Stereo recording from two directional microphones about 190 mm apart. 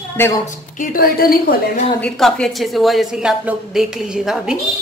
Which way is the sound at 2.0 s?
5° left (ahead or behind).